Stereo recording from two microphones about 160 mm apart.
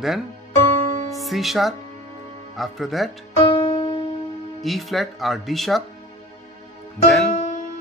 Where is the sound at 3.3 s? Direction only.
30° left (ahead or behind).